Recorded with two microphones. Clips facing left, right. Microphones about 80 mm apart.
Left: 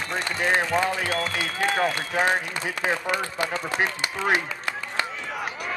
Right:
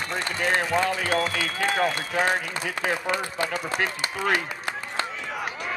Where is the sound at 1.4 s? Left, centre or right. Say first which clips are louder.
Even; left.